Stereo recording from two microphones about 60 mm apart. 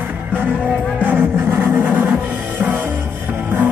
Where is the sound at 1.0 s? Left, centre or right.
Right.